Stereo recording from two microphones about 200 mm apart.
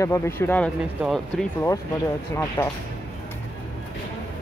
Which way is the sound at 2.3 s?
15° left (ahead or behind).